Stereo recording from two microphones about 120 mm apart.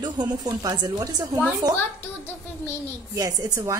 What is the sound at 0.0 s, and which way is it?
A woman's voice, 30° right (ahead or behind).